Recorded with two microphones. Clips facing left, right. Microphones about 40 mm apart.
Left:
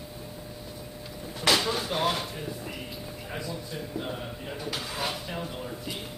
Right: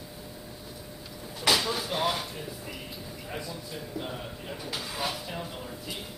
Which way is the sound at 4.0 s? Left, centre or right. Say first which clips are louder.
Left 1 dB; centre.